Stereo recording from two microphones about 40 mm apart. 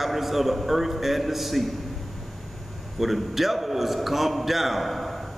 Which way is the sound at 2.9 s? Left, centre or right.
Centre.